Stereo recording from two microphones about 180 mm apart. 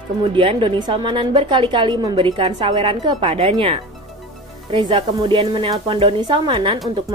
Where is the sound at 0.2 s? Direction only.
25° right (ahead or behind).